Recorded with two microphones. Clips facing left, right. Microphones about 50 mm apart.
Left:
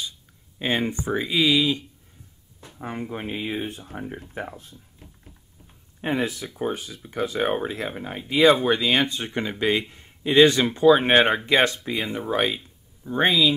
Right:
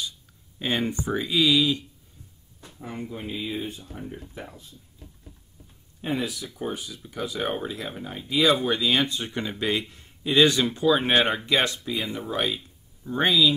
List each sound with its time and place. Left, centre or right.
0.6 s speech: left
3.1 s speech: left
3.8 s speech: left
5.9 s speech: left
12.5 s a sound: centre
13.2 s speech: left